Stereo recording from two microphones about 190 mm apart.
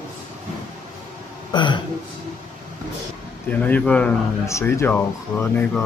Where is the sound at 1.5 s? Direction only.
25° left (ahead or behind).